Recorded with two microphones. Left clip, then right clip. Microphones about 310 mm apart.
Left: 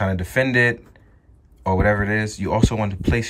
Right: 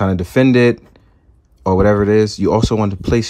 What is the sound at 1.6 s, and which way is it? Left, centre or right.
Speech, centre.